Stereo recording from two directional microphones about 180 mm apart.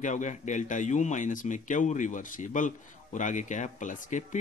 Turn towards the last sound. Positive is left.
turn(degrees=45)  # may be behind; listen again after turning